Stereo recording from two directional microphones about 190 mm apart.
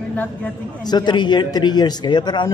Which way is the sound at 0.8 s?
20° left (ahead or behind).